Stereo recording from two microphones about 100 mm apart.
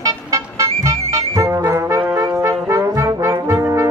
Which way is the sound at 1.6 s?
30° right (ahead or behind).